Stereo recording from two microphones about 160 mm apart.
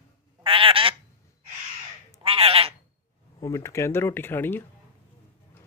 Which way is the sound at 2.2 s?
35° right (ahead or behind).